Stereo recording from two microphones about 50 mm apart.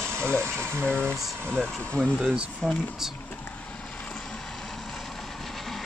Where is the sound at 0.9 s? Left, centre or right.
Left.